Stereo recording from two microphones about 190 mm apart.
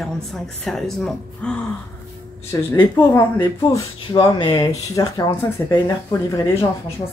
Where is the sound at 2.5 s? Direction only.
20° left (ahead or behind).